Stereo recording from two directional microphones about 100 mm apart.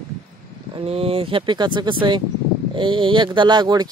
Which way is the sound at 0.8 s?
75° right (ahead or behind).